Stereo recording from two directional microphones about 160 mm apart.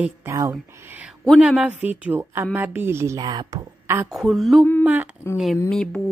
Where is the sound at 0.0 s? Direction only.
15° right (ahead or behind).